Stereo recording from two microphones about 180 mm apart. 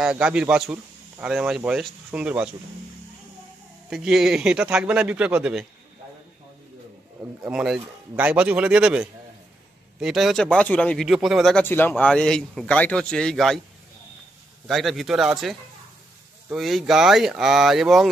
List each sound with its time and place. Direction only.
0.0 s speech: 5° right (ahead or behind)
3.9 s speech: centre (ahead or behind)
7.4 s speech: 5° right (ahead or behind)
11.6 s speech: 10° left (ahead or behind)
14.7 s speech: centre (ahead or behind)